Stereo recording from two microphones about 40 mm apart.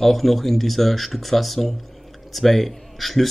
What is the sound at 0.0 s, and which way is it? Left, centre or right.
Speech, centre.